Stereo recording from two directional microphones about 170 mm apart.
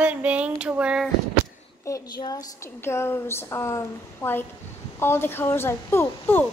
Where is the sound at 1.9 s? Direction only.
20° left (ahead or behind).